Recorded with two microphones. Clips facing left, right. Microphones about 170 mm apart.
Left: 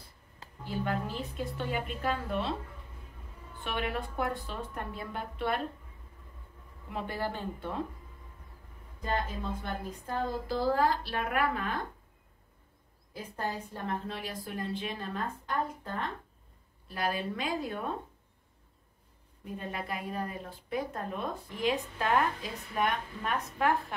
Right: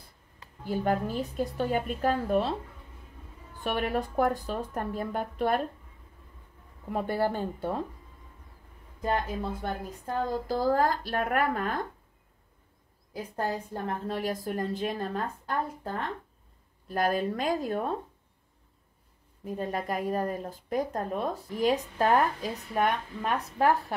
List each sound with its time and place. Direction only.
0.7 s a woman's voice: 45° right (ahead or behind)
3.6 s a woman's voice: 40° right (ahead or behind)
6.9 s speech: 45° right (ahead or behind)
9.0 s a woman's voice: 40° right (ahead or behind)
13.1 s a woman's voice: 40° right (ahead or behind)
19.4 s speech: 40° right (ahead or behind)